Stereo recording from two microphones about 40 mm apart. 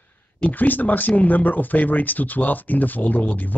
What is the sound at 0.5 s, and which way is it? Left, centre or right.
Speech, left.